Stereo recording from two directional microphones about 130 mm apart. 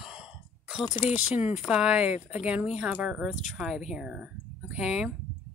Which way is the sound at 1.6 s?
5° right (ahead or behind).